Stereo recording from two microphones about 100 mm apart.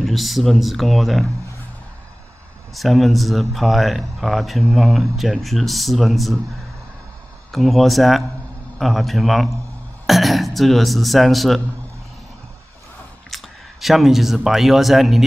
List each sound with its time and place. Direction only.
0.0 s speech: centre (ahead or behind)
2.7 s speech: centre (ahead or behind)
7.5 s speech: centre (ahead or behind)
13.3 s speech: centre (ahead or behind)